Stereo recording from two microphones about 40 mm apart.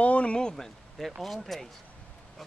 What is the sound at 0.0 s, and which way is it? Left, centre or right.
Speech, left.